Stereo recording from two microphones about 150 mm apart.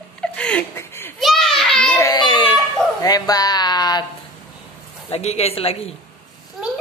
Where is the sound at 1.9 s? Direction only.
25° left (ahead or behind).